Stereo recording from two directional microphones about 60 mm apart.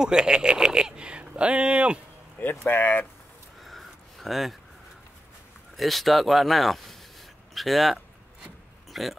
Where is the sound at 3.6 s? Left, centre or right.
Centre.